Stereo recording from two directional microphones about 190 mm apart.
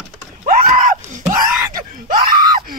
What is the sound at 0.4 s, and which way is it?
Screaming, 40° right (ahead or behind).